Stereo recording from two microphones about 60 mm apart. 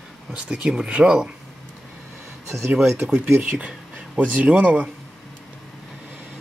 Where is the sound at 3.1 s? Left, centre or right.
Right.